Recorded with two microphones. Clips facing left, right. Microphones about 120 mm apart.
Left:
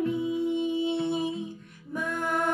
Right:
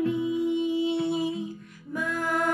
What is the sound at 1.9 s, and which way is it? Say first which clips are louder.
Music: right 1 dB; 25° left (ahead or behind).